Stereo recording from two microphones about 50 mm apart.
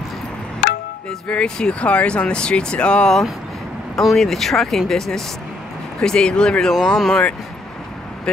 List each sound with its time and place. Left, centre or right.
1.2 s speech: left
4.0 s speech: centre
6.7 s speech: centre